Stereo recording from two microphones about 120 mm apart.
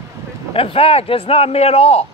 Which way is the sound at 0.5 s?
50° left (ahead or behind).